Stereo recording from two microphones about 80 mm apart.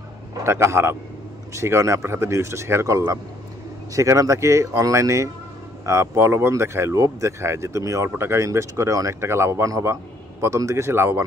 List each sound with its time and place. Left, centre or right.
0.4 s speech: right